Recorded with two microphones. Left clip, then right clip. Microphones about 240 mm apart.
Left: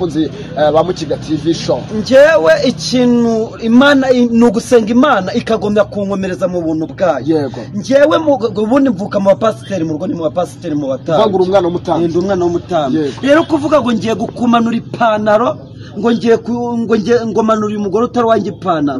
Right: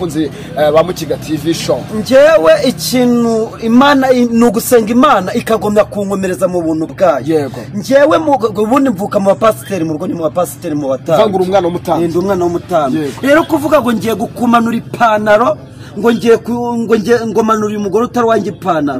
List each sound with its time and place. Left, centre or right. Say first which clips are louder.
0.0 s speech: even; right
2.0 s speech: right 1 dB; centre
11.1 s speech: even; right
12.0 s speech: even; centre